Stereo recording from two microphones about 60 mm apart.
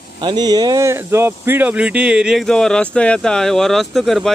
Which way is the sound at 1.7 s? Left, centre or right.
Centre.